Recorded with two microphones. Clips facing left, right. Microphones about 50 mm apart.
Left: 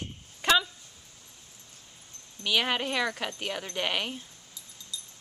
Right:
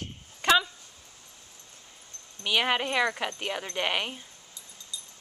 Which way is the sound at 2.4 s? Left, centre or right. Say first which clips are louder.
Right 1 dB; centre.